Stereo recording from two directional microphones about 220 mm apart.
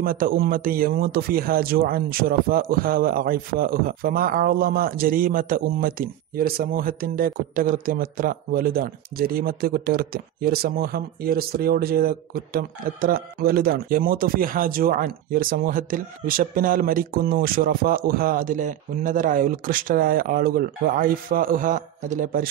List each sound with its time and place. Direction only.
0.0 s speech: 40° right (ahead or behind)